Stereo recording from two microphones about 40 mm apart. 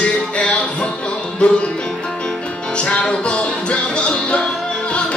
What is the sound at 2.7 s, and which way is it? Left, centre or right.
Music, left.